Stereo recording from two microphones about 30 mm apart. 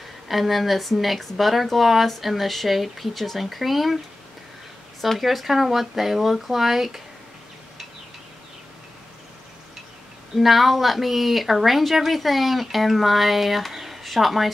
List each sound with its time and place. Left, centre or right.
0.3 s a woman's voice: centre
5.2 s a woman's voice: centre
10.3 s a woman's voice: centre